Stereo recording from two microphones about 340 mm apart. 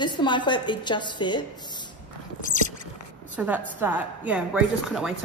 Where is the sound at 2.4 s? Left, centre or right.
Left.